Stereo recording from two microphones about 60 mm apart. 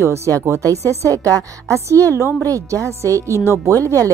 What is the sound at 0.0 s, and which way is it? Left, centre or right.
A woman's voice, right.